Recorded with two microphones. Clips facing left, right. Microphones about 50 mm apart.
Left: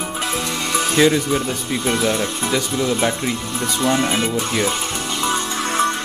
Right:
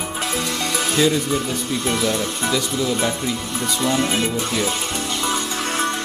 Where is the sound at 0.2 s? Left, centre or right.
Centre.